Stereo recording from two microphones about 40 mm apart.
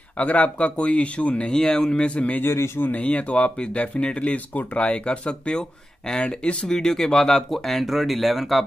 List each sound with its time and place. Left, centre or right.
0.2 s speech: left
1.5 s speech: centre
7.5 s speech: centre